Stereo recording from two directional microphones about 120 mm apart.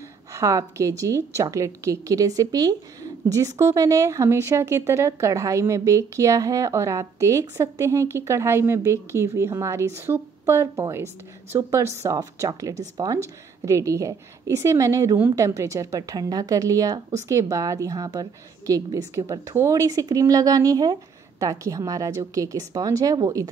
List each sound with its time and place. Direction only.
0.3 s a woman's voice: 25° right (ahead or behind)